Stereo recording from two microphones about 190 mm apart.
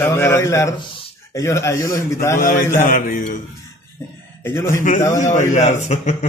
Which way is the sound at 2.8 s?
45° left (ahead or behind).